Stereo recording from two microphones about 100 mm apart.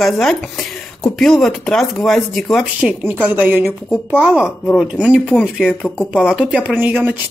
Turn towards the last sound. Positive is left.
turn(degrees=-15)  # may be behind; listen again after turning